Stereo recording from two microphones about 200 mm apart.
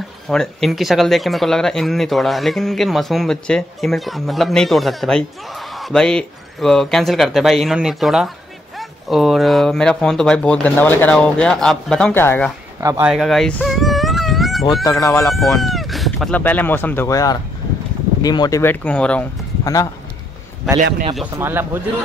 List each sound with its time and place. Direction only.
0.3 s speech: centre (ahead or behind)
12.8 s speech: 15° right (ahead or behind)
13.1 s a sound: centre (ahead or behind)
14.8 s speech: 15° left (ahead or behind)
15.6 s speech: centre (ahead or behind)
19.6 s a man's voice: 15° left (ahead or behind)
21.2 s speech: 10° right (ahead or behind)